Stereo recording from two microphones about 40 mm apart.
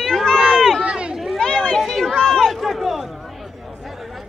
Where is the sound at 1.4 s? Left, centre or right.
Left.